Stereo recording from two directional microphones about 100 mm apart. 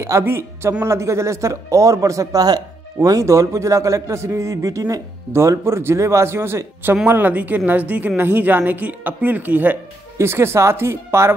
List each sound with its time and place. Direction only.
0.0 s a woman's voice: 25° right (ahead or behind)